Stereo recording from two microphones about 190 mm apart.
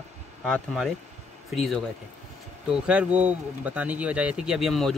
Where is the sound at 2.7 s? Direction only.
5° right (ahead or behind).